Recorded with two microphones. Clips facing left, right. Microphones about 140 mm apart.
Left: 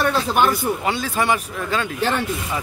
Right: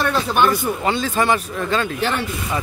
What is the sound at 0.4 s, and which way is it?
Speech, 10° left (ahead or behind).